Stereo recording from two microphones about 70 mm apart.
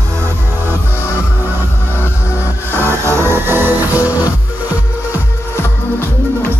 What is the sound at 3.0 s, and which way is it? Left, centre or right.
Music, right.